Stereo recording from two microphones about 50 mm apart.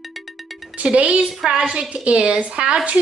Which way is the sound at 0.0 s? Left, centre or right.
Centre.